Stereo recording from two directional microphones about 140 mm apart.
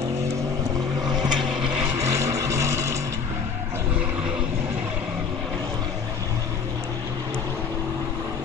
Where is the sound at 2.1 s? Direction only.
20° right (ahead or behind).